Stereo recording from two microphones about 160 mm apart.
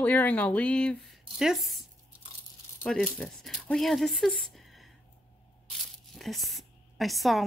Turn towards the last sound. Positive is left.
turn(degrees=0)  # may be behind; listen again after turning